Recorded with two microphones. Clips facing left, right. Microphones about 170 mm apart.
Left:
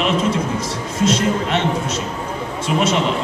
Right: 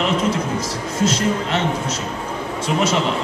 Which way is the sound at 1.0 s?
25° left (ahead or behind).